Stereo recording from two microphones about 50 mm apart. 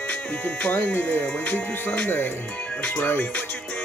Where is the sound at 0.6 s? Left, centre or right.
Left.